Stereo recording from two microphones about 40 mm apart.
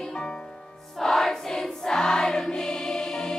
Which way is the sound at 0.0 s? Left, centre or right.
Centre.